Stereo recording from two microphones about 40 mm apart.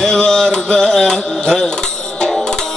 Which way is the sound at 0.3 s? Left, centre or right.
Centre.